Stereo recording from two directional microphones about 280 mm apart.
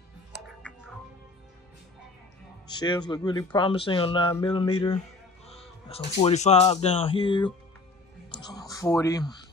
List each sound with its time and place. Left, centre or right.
0.6 s music: centre
2.7 s speech: centre
8.3 s whispering: centre